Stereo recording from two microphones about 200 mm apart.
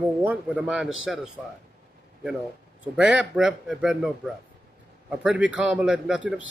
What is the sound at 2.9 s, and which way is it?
Speech, 5° right (ahead or behind).